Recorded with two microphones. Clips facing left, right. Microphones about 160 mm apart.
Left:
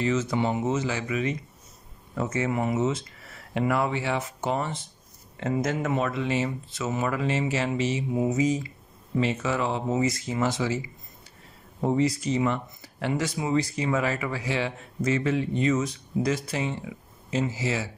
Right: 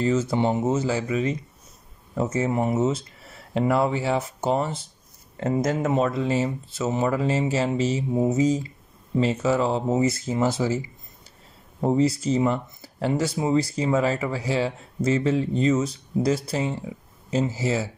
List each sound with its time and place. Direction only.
0.0 s speech: 30° right (ahead or behind)
11.8 s speech: 30° right (ahead or behind)